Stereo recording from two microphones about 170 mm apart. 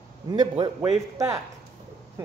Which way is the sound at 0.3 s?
25° right (ahead or behind).